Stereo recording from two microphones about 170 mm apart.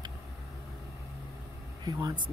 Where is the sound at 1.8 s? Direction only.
25° right (ahead or behind).